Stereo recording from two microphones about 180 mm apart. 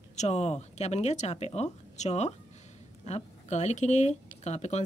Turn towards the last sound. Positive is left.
turn(degrees=40)  # may be behind; listen again after turning